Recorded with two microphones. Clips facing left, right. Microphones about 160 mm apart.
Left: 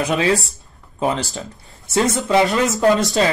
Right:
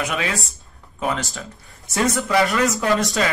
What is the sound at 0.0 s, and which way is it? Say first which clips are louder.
Speech: left 7 dB; 30° left (ahead or behind).